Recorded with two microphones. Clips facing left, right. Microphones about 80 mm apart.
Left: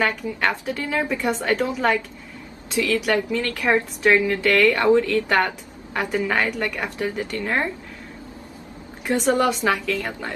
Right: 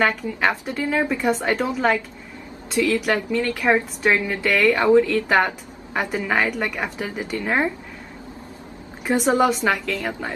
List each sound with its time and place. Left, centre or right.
0.0 s a woman's voice: centre
9.0 s a woman's voice: centre